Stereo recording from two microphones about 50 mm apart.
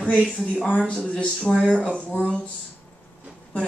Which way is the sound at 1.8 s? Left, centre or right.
Right.